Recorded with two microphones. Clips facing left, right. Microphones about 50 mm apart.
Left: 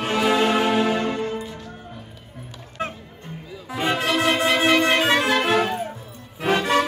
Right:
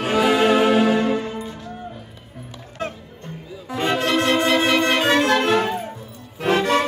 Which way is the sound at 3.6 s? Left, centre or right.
Centre.